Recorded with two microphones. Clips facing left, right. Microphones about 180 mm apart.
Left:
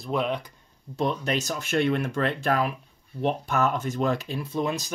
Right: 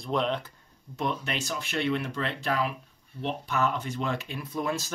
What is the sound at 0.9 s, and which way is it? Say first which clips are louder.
Speech: left 5 dB; 35° left (ahead or behind).